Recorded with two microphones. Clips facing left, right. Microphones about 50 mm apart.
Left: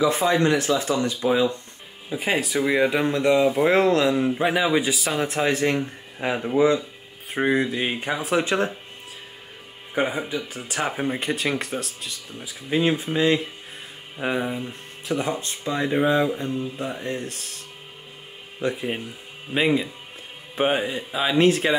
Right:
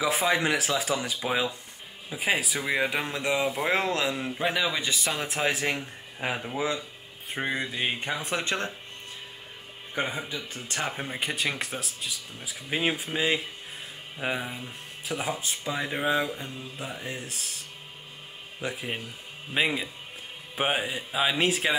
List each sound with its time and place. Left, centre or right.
0.0 s speech: centre
4.9 s speech: centre
9.9 s speech: centre
11.1 s speech: centre
18.6 s speech: centre